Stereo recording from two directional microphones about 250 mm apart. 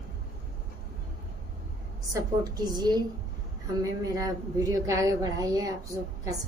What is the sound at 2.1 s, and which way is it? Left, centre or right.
A woman's voice, centre.